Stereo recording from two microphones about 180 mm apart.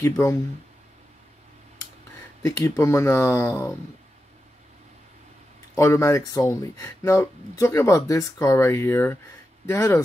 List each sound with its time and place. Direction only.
0.0 s speech: 15° left (ahead or behind)
2.4 s speech: 15° left (ahead or behind)
5.8 s speech: 15° left (ahead or behind)